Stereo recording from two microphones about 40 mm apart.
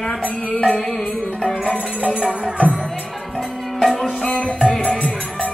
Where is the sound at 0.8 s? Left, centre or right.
Centre.